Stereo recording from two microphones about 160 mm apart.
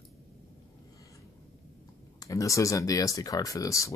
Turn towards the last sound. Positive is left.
turn(degrees=20)  # may be behind; listen again after turning